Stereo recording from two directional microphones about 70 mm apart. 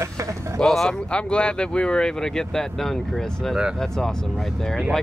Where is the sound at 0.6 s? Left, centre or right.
Centre.